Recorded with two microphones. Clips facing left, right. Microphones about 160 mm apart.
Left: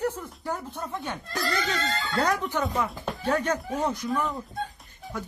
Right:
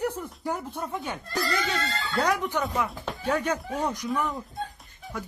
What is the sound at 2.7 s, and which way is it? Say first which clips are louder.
Speech: left 1 dB; centre (ahead or behind).